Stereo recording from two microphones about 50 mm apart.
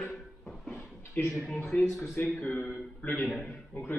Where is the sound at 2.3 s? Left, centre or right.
Left.